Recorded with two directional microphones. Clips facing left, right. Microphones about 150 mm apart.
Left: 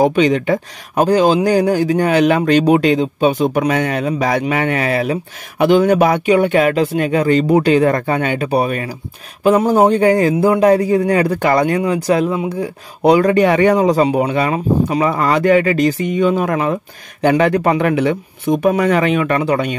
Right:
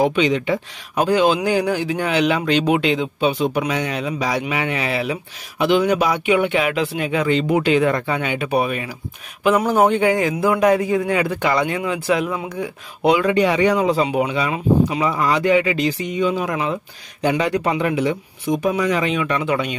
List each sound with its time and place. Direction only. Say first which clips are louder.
0.0 s a man's voice: left 4 dB; 45° left (ahead or behind)
12.3 s speech: left 6 dB; 20° left (ahead or behind)
12.5 s a man's voice: left 4 dB; 40° left (ahead or behind)
14.3 s a man's voice: left 3 dB; 50° left (ahead or behind)
19.4 s a man's voice: left 4 dB; 40° left (ahead or behind)